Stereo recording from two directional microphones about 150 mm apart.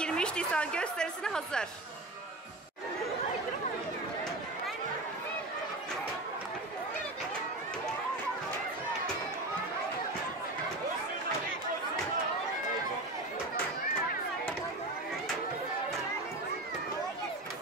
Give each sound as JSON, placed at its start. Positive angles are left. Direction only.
{"t": 0.0, "sound": "a woman's voice", "side_deg": 5}